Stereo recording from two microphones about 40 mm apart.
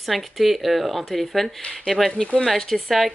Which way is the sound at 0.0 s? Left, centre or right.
Centre.